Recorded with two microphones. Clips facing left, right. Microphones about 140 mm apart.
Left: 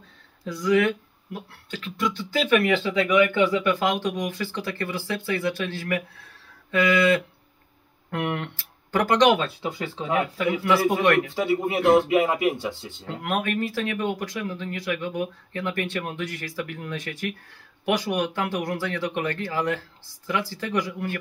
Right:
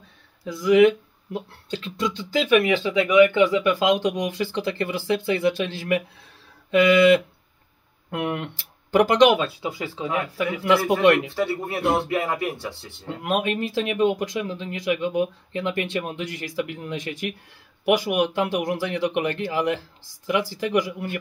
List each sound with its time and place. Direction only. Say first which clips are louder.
0.5 s speech: right 3 dB; 5° right (ahead or behind)
0.7 s speech: right 9 dB; 20° right (ahead or behind)
11.1 s speech: right 5 dB; 20° right (ahead or behind)
11.3 s speech: left 2 dB; 15° left (ahead or behind)
13.2 s speech: right 2 dB; 20° right (ahead or behind)